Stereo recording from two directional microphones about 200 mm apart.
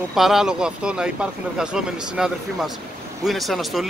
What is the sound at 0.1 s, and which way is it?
Speech, centre (ahead or behind).